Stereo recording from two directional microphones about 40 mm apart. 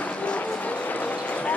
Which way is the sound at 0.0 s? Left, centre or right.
Left.